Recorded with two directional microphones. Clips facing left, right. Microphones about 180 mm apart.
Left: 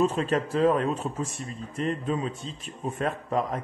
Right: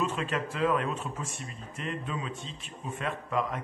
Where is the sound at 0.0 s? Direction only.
40° left (ahead or behind).